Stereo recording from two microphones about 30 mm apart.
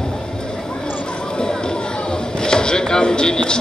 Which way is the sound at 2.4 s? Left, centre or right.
Left.